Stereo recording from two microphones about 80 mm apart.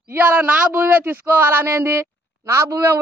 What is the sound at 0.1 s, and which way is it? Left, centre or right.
A man's voice, right.